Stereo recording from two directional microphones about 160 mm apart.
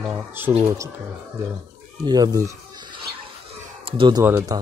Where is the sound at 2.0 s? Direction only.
25° right (ahead or behind).